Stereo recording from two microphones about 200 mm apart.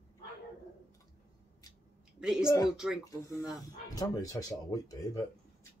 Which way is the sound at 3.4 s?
15° left (ahead or behind).